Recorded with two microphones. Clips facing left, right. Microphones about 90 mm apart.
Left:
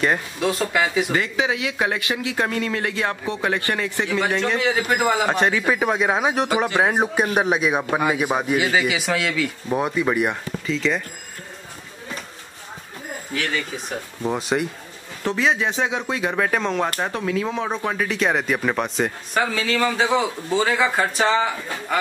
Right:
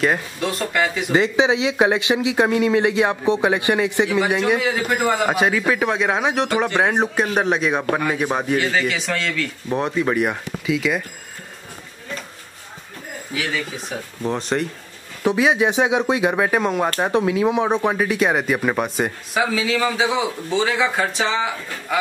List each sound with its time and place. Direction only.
0.0 s speech: centre (ahead or behind)
1.1 s speech: 20° right (ahead or behind)
4.6 s a man's voice: centre (ahead or behind)
13.3 s speech: centre (ahead or behind)
15.2 s speech: 10° right (ahead or behind)
18.0 s speech: 5° right (ahead or behind)